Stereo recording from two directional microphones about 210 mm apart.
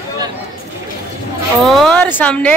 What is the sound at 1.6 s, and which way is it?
Speech, centre (ahead or behind).